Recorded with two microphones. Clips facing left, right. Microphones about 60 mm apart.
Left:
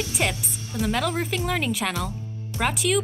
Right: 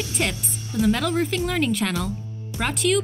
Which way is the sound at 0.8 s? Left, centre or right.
Centre.